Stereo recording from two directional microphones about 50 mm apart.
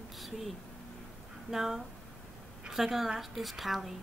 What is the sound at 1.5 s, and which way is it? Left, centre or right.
A woman's voice, centre.